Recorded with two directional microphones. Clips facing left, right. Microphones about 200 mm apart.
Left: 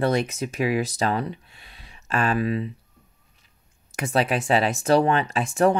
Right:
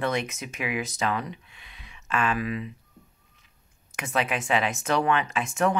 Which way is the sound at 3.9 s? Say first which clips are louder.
Left 5 dB; 35° left (ahead or behind).